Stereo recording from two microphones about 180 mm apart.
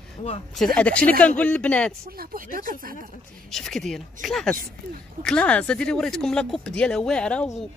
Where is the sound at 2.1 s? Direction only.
50° right (ahead or behind).